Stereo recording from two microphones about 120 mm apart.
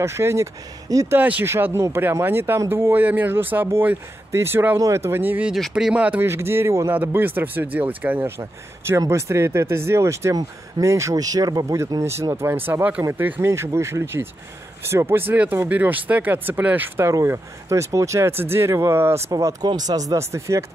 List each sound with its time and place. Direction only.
0.0 s speech: 25° right (ahead or behind)
1.1 s speech: 15° right (ahead or behind)
5.5 s speech: 5° right (ahead or behind); by 19.2 s 20° right (ahead or behind)
19.3 s speech: 35° right (ahead or behind)